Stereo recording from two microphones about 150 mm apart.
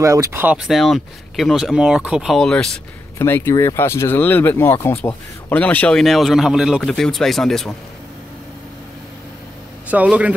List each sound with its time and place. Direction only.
0.0 s speech: 20° right (ahead or behind)
0.6 s speech: centre (ahead or behind)
3.2 s speech: 15° left (ahead or behind)
9.8 s speech: 10° right (ahead or behind)